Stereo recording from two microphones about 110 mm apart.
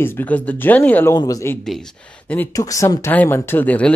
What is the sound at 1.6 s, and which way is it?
Speech, 5° left (ahead or behind).